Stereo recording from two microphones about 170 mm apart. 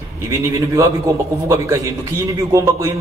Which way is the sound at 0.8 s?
15° right (ahead or behind).